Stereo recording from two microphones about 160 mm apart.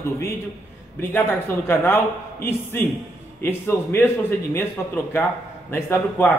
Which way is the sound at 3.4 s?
15° left (ahead or behind).